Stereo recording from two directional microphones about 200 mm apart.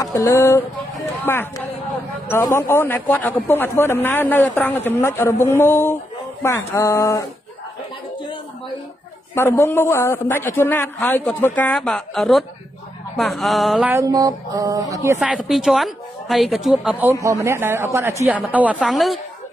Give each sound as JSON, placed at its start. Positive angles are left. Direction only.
{"t": 0.0, "sound": "a man's voice", "side_deg": 15}
{"t": 9.3, "sound": "a man's voice", "side_deg": 10}
{"t": 13.1, "sound": "mantra", "side_deg": 0}
{"t": 15.1, "sound": "a woman's voice", "side_deg": -5}
{"t": 17.2, "sound": "mantra", "side_deg": -15}